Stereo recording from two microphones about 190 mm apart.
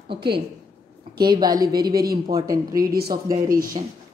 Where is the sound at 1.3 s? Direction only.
20° right (ahead or behind).